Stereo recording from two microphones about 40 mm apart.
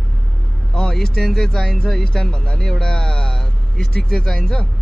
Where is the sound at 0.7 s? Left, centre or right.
Centre.